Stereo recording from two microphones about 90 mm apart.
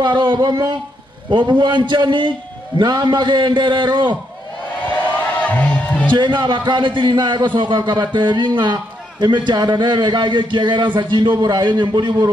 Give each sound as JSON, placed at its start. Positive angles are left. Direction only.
{"t": 0.0, "sound": "a man's voice", "side_deg": -60}
{"t": 5.4, "sound": "music", "side_deg": 15}
{"t": 6.1, "sound": "a man's voice", "side_deg": -60}